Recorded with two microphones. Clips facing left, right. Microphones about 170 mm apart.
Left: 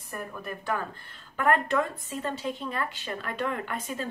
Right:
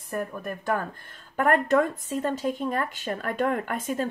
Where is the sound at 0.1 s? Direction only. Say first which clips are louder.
Right 6 dB; 45° right (ahead or behind).